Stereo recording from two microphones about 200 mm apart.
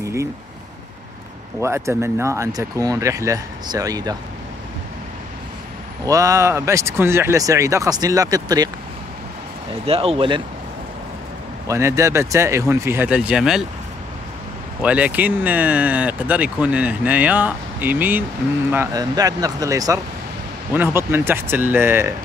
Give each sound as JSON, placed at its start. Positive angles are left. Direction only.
{"t": 0.0, "sound": "a sound", "side_deg": -15}
{"t": 1.6, "sound": "speech", "side_deg": -15}
{"t": 6.0, "sound": "speech", "side_deg": -15}
{"t": 9.8, "sound": "speech", "side_deg": -30}
{"t": 11.6, "sound": "speech", "side_deg": -15}
{"t": 14.8, "sound": "speech", "side_deg": -5}